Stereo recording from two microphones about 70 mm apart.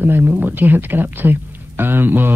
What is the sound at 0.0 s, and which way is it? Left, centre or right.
Speech, right.